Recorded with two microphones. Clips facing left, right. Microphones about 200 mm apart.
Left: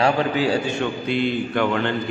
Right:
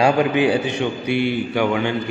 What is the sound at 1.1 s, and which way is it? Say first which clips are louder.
Speech: right 1 dB; 10° right (ahead or behind).